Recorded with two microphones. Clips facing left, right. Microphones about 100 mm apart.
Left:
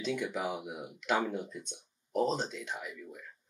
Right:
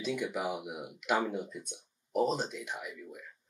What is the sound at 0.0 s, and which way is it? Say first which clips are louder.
Speech: even; 5° right (ahead or behind).